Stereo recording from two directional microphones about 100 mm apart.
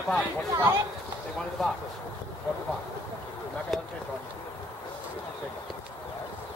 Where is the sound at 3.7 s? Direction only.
Centre (ahead or behind).